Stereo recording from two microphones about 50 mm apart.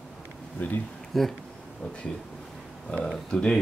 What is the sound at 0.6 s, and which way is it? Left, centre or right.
Speech, left.